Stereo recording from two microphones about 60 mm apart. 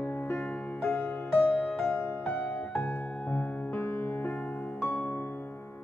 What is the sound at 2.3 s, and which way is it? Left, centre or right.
Music, left.